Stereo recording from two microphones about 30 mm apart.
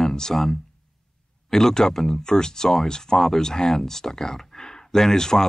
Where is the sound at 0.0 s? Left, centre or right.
Centre.